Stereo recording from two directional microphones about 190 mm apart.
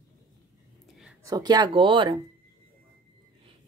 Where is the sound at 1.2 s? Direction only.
20° right (ahead or behind).